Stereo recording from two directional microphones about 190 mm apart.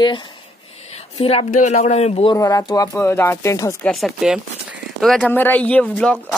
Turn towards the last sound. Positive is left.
turn(degrees=5)  # may be behind; listen again after turning